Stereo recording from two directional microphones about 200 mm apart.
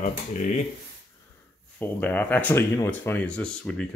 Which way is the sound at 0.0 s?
40° left (ahead or behind).